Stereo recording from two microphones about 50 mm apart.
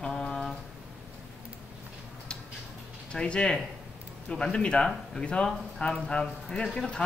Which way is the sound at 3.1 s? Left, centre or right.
Centre.